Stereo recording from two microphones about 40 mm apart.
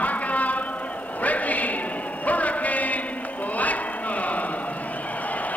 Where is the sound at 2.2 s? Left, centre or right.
Left.